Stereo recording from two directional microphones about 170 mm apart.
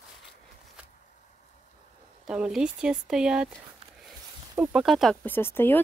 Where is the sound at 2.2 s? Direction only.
5° right (ahead or behind).